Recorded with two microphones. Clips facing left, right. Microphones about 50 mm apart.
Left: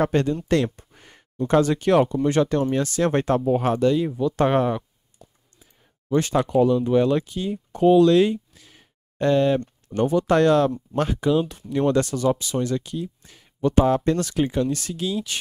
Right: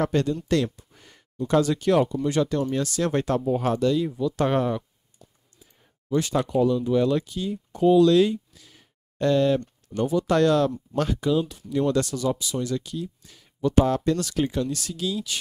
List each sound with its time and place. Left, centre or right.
0.0 s speech: left
8.0 s speech: left
9.9 s speech: left
10.3 s speech: left
14.3 s speech: centre
14.6 s speech: left